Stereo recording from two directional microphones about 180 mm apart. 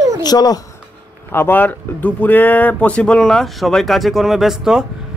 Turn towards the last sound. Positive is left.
turn(degrees=-5)  # may be behind; listen again after turning